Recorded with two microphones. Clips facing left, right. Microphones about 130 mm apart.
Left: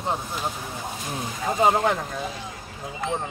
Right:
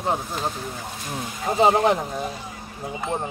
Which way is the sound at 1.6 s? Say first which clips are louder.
Right 3 dB; 20° right (ahead or behind).